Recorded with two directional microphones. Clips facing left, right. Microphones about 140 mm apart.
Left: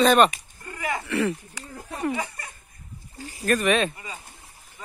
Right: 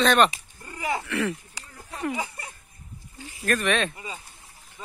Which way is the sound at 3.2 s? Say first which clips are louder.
Left 4 dB; 40° left (ahead or behind).